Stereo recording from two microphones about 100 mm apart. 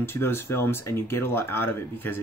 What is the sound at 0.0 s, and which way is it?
Speech, 25° left (ahead or behind).